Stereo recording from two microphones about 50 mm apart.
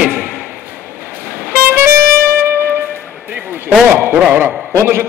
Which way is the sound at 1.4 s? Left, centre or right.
Right.